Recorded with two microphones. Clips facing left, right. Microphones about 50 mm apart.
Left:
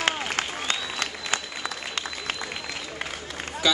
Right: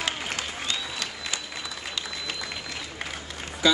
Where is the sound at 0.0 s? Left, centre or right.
Left.